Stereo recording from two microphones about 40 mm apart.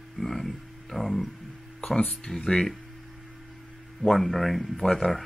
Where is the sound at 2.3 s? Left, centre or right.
Left.